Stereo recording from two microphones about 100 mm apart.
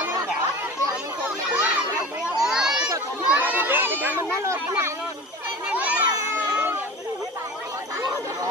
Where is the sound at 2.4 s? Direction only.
5° right (ahead or behind).